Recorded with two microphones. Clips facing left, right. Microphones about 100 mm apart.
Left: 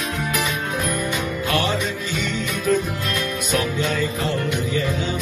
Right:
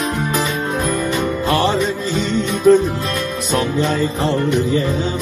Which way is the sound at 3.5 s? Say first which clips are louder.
Right 5 dB; 30° right (ahead or behind).